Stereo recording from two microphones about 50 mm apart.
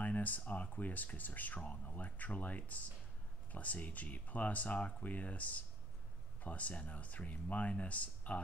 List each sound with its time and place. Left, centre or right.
0.0 s speech: left